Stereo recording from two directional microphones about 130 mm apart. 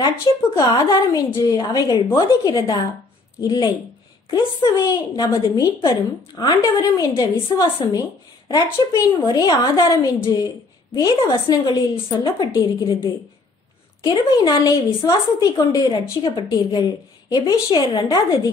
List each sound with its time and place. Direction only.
0.6 s a woman's voice: 25° left (ahead or behind)